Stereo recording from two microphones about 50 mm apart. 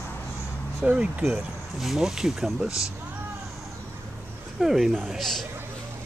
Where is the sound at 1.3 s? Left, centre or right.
Centre.